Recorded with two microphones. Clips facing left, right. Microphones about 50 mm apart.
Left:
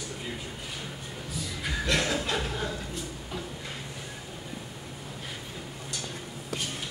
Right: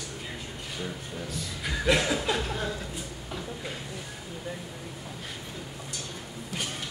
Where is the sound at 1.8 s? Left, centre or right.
Centre.